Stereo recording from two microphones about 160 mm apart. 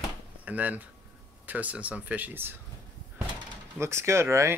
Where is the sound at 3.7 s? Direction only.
15° right (ahead or behind).